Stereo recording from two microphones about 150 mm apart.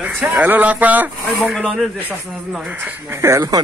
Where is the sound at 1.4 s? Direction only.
Centre (ahead or behind).